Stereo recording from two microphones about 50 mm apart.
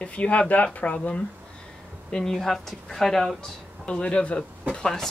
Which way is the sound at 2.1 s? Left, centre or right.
Centre.